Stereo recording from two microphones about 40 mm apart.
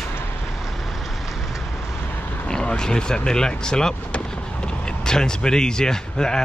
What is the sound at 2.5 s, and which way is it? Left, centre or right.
Speech, left.